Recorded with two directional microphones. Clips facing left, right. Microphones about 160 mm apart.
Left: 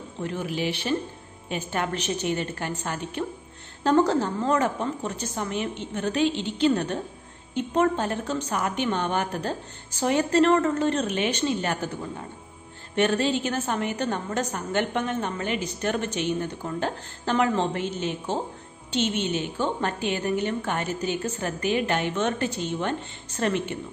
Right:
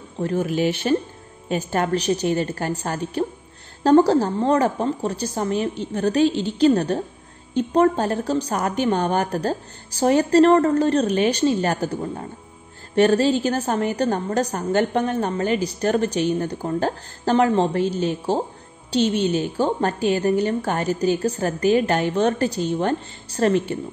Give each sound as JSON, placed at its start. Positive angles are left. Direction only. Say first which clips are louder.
{"t": 0.2, "sound": "a woman's voice", "louder": "right 7 dB", "side_deg": -40}